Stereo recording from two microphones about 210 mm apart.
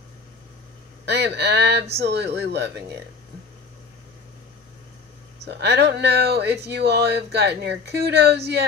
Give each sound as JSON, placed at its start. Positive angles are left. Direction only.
{"t": 1.0, "sound": "speech", "side_deg": -55}
{"t": 5.4, "sound": "speech", "side_deg": -55}